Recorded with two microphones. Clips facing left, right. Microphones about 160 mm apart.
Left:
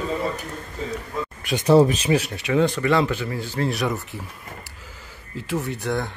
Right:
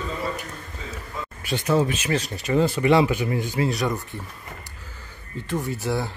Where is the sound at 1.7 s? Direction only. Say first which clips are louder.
Left 7 dB; 35° left (ahead or behind).